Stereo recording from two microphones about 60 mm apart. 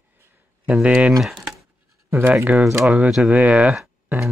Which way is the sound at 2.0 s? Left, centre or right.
Right.